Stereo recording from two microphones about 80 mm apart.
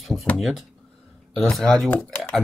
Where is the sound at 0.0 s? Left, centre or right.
Centre.